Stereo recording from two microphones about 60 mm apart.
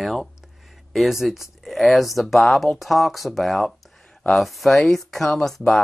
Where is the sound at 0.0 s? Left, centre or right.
Centre.